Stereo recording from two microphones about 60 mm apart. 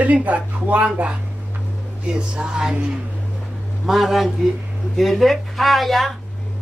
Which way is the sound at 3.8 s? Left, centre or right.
Centre.